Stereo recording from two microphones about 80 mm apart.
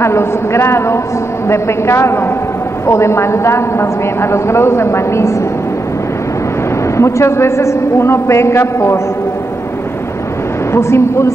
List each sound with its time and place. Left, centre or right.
0.0 s a woman's voice: left
7.0 s a woman's voice: left
10.7 s a woman's voice: left